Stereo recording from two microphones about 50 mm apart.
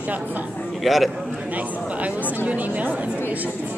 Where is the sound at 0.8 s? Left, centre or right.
Centre.